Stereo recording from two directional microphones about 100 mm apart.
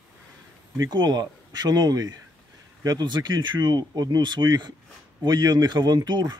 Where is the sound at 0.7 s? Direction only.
45° right (ahead or behind).